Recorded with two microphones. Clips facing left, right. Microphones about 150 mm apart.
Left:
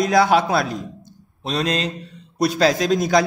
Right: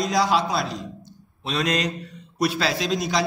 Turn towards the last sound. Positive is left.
turn(degrees=50)  # may be behind; listen again after turning